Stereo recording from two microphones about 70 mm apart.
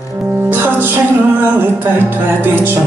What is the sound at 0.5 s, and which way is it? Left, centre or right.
Music, right.